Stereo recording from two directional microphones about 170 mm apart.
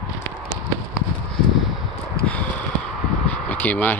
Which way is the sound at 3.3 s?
10° left (ahead or behind).